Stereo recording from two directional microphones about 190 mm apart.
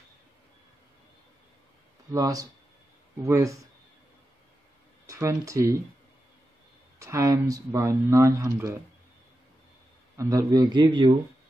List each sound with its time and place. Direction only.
2.1 s a man's voice: 20° right (ahead or behind)
5.0 s speech: 15° right (ahead or behind)
7.0 s speech: 15° right (ahead or behind)
10.1 s a man's voice: 20° right (ahead or behind)